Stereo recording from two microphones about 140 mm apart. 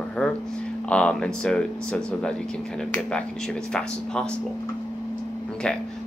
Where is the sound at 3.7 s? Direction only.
5° left (ahead or behind).